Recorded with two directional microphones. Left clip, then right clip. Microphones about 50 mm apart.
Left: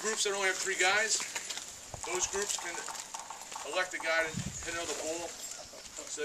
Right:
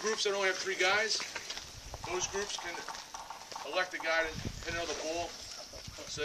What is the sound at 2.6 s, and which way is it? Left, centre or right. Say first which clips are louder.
Speech: left 1 dB; centre.